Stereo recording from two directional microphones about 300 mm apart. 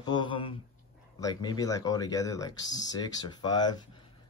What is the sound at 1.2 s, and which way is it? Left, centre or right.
Speech, centre.